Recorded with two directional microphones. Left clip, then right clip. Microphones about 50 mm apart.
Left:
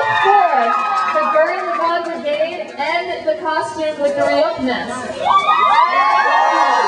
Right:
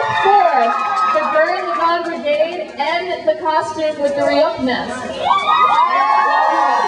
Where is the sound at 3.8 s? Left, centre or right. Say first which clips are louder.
Left 2 dB; centre.